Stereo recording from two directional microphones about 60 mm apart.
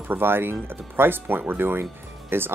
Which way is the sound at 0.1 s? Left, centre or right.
Right.